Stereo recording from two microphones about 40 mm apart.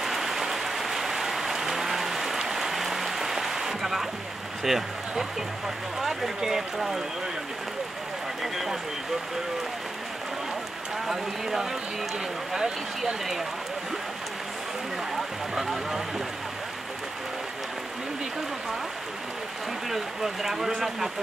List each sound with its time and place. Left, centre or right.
0.0 s rain on surface: centre
4.6 s speech: centre
12.5 s speech: centre
15.1 s a sound: centre
19.9 s speech: centre